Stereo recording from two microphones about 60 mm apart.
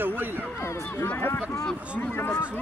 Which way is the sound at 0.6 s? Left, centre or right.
Left.